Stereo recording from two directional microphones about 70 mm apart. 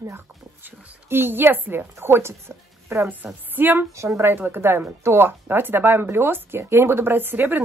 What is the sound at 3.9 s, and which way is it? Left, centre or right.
Speech, right.